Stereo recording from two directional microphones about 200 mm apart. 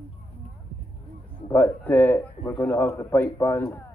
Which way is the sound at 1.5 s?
10° left (ahead or behind).